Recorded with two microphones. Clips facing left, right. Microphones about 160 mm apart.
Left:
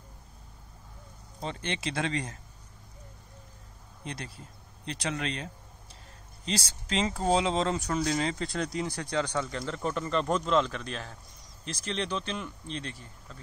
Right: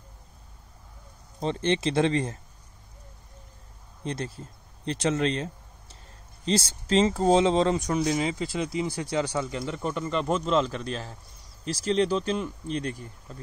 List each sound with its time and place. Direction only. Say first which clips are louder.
1.4 s speech: right 9 dB; 30° right (ahead or behind)
4.0 s speech: right 8 dB; 30° right (ahead or behind); by 10.7 s 5° right (ahead or behind)
11.8 s speech: right 9 dB; 35° right (ahead or behind)
12.8 s speech: right 8 dB; 15° right (ahead or behind)